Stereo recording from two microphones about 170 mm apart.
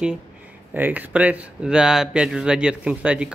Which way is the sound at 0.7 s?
10° right (ahead or behind).